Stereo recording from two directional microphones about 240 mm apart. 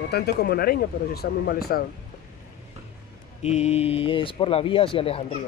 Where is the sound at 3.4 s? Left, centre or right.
Left.